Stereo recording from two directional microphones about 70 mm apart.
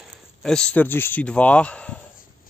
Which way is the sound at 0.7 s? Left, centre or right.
Left.